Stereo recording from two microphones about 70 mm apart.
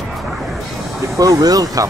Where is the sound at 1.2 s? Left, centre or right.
Right.